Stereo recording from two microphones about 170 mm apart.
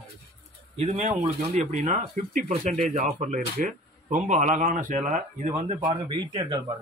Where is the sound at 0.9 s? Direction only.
45° right (ahead or behind).